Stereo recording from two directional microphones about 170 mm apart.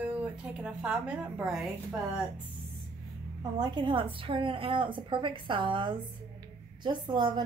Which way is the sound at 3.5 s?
25° right (ahead or behind).